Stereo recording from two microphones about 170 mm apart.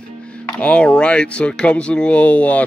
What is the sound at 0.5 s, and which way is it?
Speech, 5° left (ahead or behind).